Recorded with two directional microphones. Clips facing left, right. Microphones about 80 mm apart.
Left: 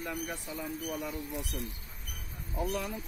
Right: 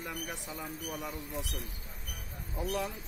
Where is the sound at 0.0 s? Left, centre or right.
Centre.